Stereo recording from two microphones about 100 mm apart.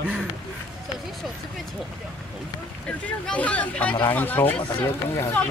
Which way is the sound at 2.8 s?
10° left (ahead or behind).